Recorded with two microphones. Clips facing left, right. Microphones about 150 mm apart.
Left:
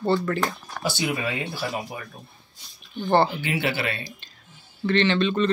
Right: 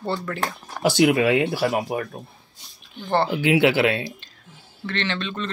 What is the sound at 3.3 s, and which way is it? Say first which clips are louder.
Speech: right 8 dB; 90° right.